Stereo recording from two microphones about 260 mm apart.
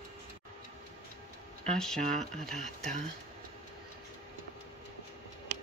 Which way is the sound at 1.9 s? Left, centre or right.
Right.